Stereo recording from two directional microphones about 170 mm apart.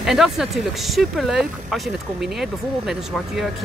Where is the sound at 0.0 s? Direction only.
Centre (ahead or behind).